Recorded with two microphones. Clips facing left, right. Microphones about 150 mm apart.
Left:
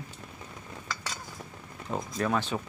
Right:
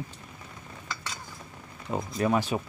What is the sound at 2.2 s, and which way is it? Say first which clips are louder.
Speech: right 3 dB; 10° right (ahead or behind).